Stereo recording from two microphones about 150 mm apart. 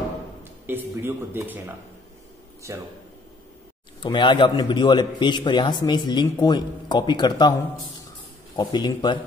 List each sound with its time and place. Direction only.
0.4 s speech: 15° right (ahead or behind)
2.7 s a man's voice: 20° right (ahead or behind)
4.0 s a man's voice: 30° left (ahead or behind)
8.5 s speech: 30° left (ahead or behind)